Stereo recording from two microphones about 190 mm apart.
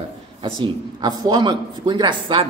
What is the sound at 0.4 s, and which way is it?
A man's voice, 25° right (ahead or behind).